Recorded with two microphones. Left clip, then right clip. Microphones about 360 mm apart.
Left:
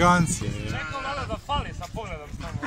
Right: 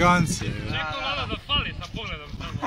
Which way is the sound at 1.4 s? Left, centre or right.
Left.